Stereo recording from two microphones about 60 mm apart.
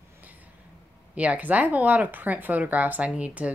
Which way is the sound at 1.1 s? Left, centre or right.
Right.